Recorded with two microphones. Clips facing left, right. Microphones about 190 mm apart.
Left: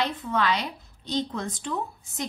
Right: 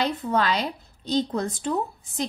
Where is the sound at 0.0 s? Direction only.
35° right (ahead or behind).